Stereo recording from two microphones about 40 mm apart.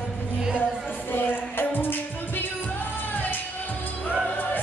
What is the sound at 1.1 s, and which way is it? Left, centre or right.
Music, left.